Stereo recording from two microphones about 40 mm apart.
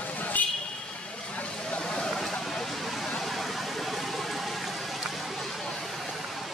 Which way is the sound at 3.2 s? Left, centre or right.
Centre.